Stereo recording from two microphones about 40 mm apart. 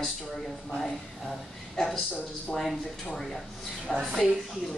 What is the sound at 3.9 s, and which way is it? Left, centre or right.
Speech, centre.